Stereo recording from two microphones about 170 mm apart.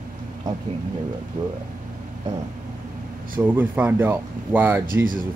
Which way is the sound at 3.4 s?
10° right (ahead or behind).